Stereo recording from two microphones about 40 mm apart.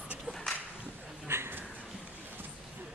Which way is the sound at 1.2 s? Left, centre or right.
Right.